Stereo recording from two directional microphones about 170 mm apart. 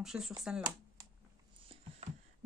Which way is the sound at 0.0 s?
Centre (ahead or behind).